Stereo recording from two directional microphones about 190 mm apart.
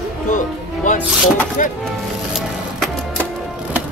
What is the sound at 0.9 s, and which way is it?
Speech, 45° left (ahead or behind).